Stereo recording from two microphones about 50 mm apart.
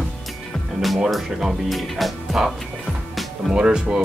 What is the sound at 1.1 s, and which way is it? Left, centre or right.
Speech, centre.